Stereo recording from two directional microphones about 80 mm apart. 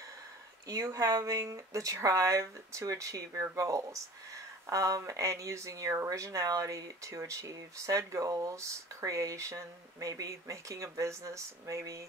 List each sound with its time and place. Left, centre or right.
0.7 s speech: right